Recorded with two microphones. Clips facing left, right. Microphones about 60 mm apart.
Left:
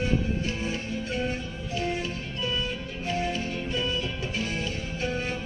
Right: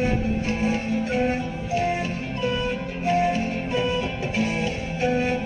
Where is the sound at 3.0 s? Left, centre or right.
Right.